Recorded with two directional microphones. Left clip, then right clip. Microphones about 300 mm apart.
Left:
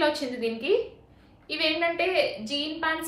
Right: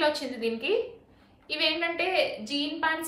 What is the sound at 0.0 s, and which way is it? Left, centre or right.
A woman's voice, centre.